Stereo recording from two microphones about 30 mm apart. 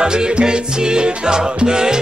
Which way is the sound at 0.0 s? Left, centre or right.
Right.